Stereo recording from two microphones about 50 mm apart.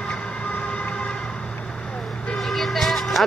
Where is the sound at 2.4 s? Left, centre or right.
Centre.